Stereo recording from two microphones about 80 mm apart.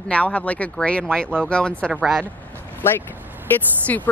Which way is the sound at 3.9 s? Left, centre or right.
Left.